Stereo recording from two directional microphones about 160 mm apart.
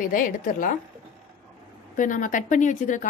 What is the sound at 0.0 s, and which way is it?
Speech, 55° left (ahead or behind).